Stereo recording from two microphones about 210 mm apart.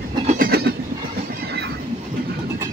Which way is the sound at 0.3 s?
45° right (ahead or behind).